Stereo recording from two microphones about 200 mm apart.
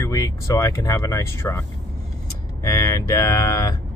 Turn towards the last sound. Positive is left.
turn(degrees=20)  # may be behind; listen again after turning